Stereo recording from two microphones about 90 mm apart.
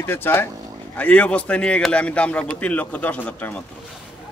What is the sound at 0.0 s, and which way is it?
A man's voice, 25° left (ahead or behind).